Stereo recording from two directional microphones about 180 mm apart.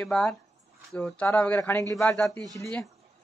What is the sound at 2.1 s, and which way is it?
Speech, centre (ahead or behind).